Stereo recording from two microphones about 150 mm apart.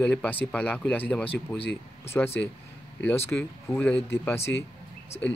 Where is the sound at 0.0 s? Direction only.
10° left (ahead or behind).